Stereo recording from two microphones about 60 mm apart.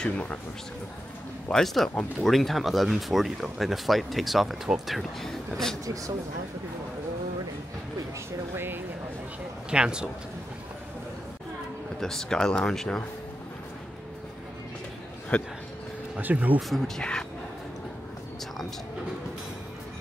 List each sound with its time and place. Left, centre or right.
0.0 s speech: left
1.5 s speech: centre
4.9 s speech: centre
8.5 s speech: right
9.7 s speech: centre
12.0 s speech: centre
15.3 s speech: centre
16.2 s speech: right
16.6 s speech: centre